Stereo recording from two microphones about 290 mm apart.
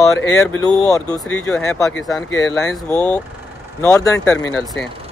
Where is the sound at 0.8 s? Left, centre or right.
Centre.